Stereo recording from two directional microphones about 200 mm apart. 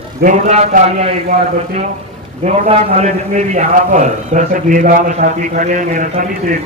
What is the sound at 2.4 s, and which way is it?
A man's voice, 35° right (ahead or behind).